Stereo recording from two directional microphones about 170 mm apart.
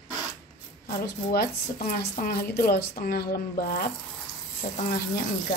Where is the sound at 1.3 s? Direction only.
60° left (ahead or behind).